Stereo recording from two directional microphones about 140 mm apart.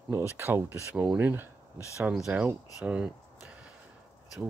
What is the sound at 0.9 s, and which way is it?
Speech, 10° right (ahead or behind).